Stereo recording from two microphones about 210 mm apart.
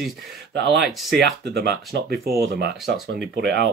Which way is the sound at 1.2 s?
50° right (ahead or behind).